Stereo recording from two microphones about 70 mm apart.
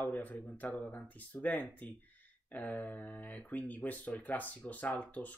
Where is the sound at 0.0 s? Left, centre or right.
Left.